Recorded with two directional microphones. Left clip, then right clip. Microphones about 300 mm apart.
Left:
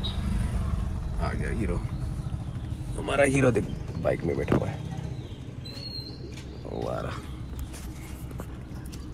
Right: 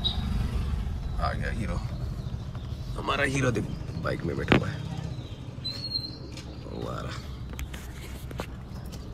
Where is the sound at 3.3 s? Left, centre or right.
Centre.